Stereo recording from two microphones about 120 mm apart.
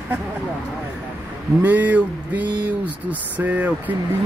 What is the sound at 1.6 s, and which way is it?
Speech, 15° right (ahead or behind).